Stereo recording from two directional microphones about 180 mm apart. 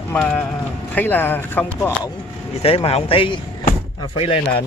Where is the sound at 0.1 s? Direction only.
10° left (ahead or behind).